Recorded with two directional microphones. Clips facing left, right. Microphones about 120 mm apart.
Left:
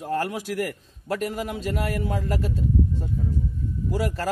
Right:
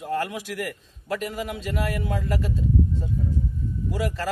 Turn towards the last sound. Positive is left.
turn(degrees=40)  # may be behind; listen again after turning